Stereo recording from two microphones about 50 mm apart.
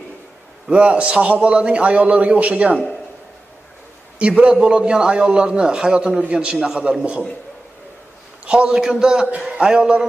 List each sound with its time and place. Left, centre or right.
0.7 s a man's voice: right
4.2 s a man's voice: right
8.5 s a man's voice: right
8.7 s a man's voice: centre